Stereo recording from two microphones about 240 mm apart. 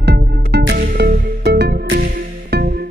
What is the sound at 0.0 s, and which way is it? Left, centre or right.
Music, right.